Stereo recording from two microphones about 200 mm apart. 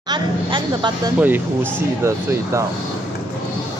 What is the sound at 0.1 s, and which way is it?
Speech, 20° right (ahead or behind).